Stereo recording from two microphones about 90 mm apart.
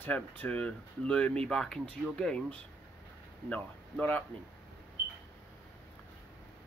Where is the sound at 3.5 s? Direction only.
20° left (ahead or behind).